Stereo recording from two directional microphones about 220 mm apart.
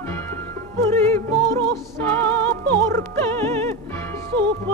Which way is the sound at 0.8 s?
10° left (ahead or behind).